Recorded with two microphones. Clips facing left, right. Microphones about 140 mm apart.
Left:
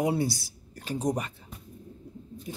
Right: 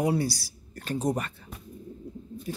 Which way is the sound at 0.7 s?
10° left (ahead or behind).